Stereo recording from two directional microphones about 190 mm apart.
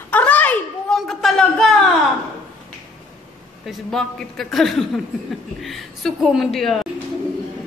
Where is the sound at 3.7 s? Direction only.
Centre (ahead or behind).